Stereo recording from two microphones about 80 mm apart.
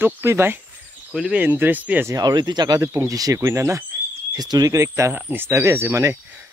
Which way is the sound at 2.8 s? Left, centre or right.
Right.